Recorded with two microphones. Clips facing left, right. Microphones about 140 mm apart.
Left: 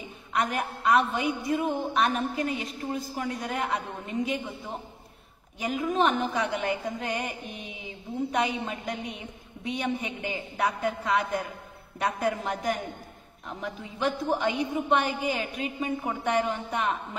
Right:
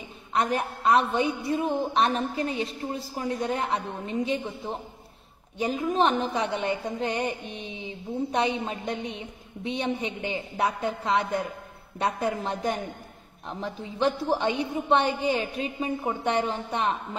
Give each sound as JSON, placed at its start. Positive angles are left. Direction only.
{"t": 0.3, "sound": "a woman's voice", "side_deg": -30}